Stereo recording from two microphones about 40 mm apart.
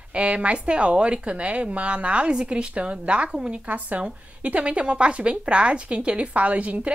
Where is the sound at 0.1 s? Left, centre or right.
Right.